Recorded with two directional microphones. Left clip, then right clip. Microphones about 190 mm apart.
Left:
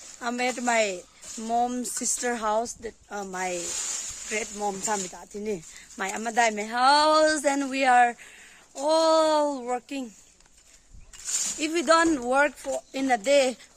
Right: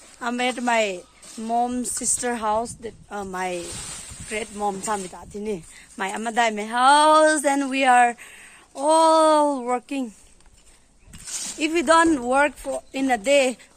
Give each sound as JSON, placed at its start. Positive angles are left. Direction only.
{"t": 0.2, "sound": "speech", "side_deg": 5}
{"t": 3.6, "sound": "speech", "side_deg": 30}
{"t": 4.3, "sound": "speech", "side_deg": 0}
{"t": 11.2, "sound": "a sound", "side_deg": 45}
{"t": 11.6, "sound": "speech", "side_deg": -5}